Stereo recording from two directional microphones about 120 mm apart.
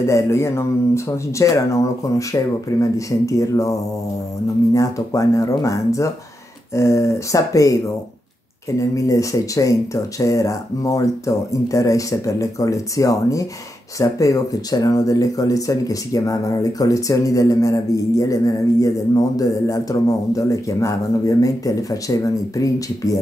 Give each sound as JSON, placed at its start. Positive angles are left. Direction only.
{"t": 0.0, "sound": "speech", "side_deg": 25}
{"t": 4.7, "sound": "speech", "side_deg": 30}